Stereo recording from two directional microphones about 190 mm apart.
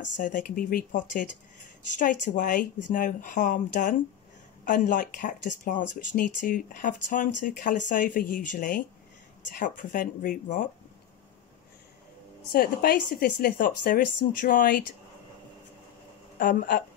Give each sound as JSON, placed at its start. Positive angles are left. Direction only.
{"t": 0.2, "sound": "speech", "side_deg": 45}
{"t": 12.5, "sound": "speech", "side_deg": 50}
{"t": 16.3, "sound": "speech", "side_deg": 45}